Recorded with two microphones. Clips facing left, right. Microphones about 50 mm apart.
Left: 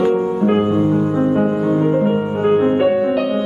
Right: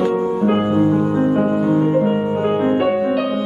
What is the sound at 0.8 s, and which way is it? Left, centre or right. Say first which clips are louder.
Music: even; right.